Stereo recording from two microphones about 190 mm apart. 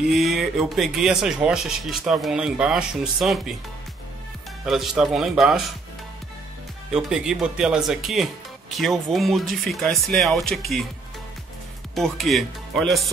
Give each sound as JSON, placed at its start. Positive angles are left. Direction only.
{"t": 0.0, "sound": "speech", "side_deg": 0}
{"t": 4.6, "sound": "speech", "side_deg": 0}
{"t": 6.9, "sound": "speech", "side_deg": -5}
{"t": 11.9, "sound": "speech", "side_deg": 0}